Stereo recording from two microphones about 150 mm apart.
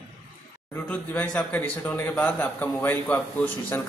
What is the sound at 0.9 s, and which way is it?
Speech, 10° left (ahead or behind).